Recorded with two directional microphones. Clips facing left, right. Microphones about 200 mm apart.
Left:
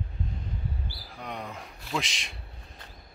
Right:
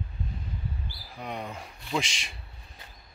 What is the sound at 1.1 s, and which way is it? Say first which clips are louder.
A man's voice: right 2 dB; centre (ahead or behind).